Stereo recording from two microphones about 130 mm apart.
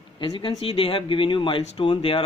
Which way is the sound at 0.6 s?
45° left (ahead or behind).